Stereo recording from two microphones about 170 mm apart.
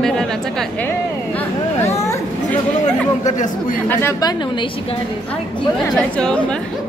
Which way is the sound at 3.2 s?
45° left (ahead or behind).